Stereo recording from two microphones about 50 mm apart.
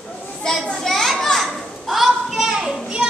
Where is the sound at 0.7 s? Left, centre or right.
Centre.